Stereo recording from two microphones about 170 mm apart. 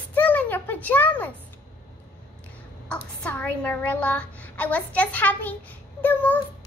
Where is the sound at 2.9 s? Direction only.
10° left (ahead or behind).